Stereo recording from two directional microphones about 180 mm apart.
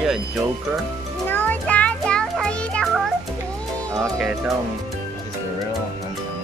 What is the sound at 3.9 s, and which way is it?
Music, 15° right (ahead or behind).